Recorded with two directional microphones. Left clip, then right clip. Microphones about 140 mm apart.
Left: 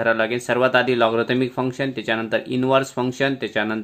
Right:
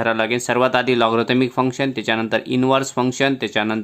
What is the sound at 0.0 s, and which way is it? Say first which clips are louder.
Speech: right 1 dB; 35° right (ahead or behind).